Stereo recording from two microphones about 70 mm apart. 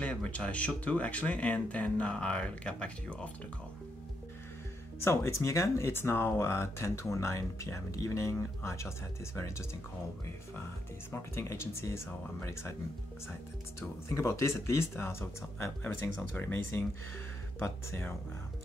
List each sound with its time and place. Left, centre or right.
0.0 s speech: centre
5.0 s speech: left
11.1 s speech: left
13.7 s speech: left